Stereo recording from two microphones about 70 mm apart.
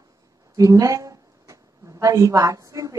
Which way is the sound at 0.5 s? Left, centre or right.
Right.